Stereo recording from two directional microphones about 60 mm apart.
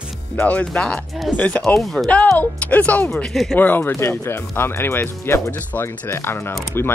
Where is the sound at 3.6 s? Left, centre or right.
Left.